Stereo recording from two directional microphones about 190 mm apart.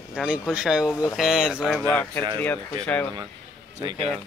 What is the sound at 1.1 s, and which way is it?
Speech, centre (ahead or behind).